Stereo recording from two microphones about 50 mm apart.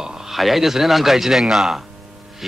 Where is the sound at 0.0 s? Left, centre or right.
Centre.